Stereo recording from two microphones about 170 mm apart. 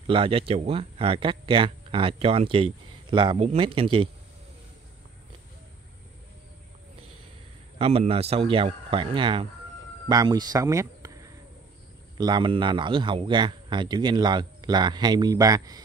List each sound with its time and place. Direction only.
0.0 s speech: 30° right (ahead or behind)
7.8 s speech: 35° right (ahead or behind); by 11.1 s 20° right (ahead or behind)
12.2 s speech: 25° right (ahead or behind)